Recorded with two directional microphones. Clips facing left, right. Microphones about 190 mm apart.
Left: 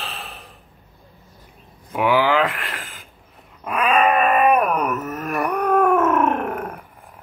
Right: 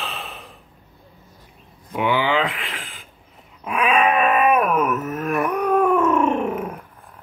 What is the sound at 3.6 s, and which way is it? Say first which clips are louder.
Wail: left 1 dB; centre (ahead or behind).